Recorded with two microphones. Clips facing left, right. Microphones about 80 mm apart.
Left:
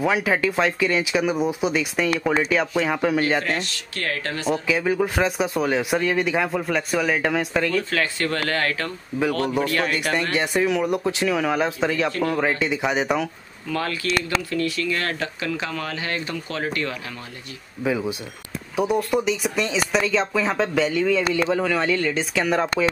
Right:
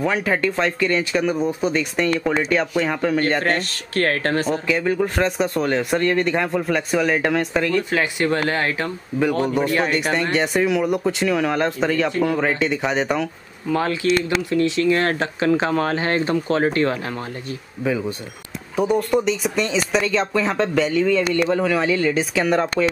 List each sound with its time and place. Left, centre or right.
0.0 s speech: centre
3.4 s speech: right
4.6 s speech: centre
7.9 s speech: centre
9.5 s speech: centre
13.7 s speech: right
17.8 s speech: centre